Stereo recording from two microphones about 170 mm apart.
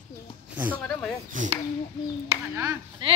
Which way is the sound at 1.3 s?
50° right (ahead or behind).